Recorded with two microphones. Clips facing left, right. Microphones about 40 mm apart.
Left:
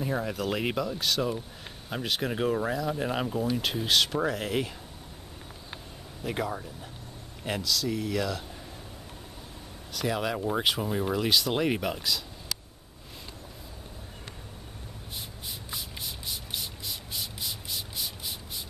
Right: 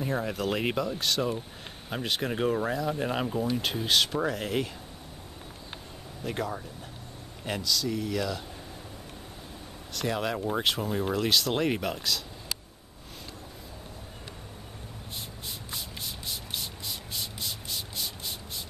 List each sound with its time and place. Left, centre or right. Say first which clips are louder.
0.0 s speech: even; centre
6.2 s speech: left 1 dB; centre
9.9 s speech: even; centre
15.7 s a sound: even; centre